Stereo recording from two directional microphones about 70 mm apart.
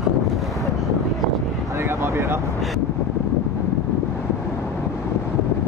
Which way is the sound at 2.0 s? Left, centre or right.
Right.